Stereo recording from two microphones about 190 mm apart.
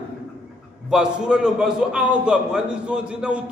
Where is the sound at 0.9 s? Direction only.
5° right (ahead or behind).